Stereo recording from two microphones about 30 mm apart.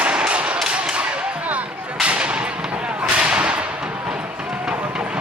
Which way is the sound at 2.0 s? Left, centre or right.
Right.